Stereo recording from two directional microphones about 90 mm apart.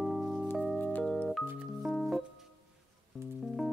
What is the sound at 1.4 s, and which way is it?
Music, 20° right (ahead or behind).